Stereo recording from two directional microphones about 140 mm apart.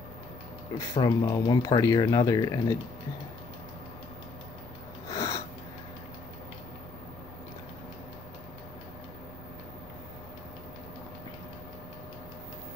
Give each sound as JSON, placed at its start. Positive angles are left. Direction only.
{"t": 0.9, "sound": "speech", "side_deg": 30}
{"t": 5.0, "sound": "snort", "side_deg": 25}